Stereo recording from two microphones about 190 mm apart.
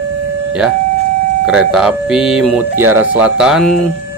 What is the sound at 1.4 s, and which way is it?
Speech, 5° right (ahead or behind).